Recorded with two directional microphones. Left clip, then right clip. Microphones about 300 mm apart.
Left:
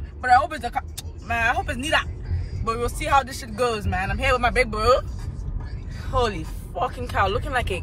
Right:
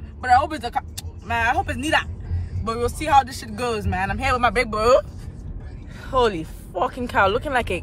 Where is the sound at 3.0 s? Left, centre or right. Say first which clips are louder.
Right 4 dB; centre; by 5.0 s right.